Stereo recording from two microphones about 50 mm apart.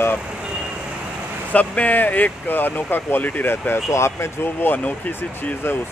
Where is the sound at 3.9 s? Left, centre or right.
Left.